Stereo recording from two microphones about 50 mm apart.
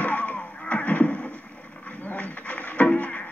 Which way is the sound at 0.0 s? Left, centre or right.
Left.